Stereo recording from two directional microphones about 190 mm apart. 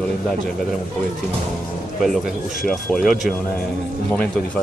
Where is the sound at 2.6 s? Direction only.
Centre (ahead or behind).